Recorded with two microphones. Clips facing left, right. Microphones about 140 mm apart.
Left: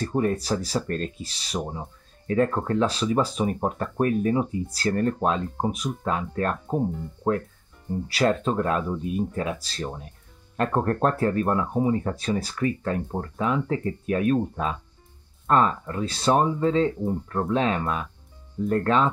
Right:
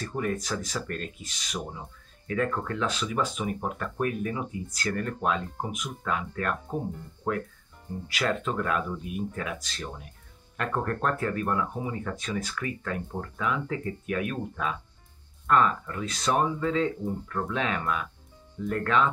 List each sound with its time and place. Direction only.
0.0 s speech: 35° left (ahead or behind)
8.1 s speech: 35° left (ahead or behind)